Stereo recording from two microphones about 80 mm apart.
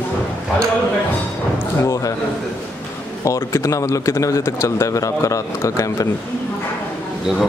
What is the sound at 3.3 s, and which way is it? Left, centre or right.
Speech, left.